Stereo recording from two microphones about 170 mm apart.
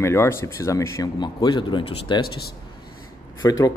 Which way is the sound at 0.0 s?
15° left (ahead or behind).